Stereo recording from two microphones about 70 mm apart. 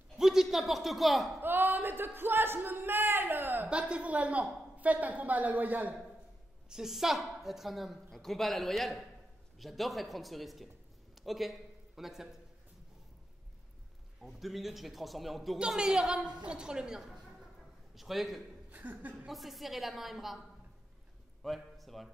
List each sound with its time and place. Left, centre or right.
0.2 s speech: centre
1.4 s speech: right
3.6 s a woman's voice: centre
6.7 s a woman's voice: centre
14.2 s a woman's voice: centre
18.7 s chuckle: right
19.2 s a woman's voice: centre
21.4 s a man's voice: centre